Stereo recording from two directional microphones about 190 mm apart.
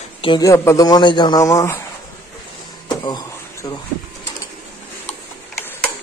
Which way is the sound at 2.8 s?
20° left (ahead or behind).